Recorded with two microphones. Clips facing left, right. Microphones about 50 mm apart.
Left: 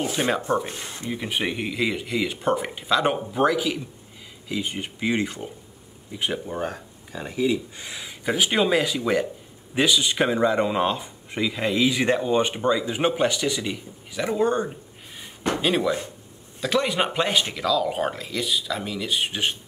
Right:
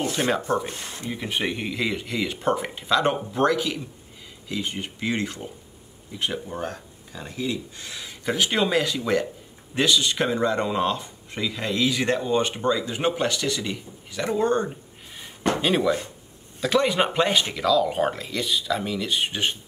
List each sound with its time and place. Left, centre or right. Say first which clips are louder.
0.0 s speech: even; centre